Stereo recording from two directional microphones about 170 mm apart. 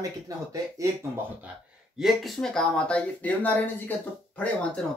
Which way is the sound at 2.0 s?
Centre (ahead or behind).